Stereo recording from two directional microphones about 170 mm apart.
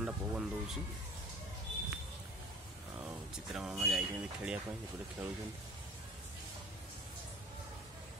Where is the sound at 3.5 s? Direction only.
5° right (ahead or behind).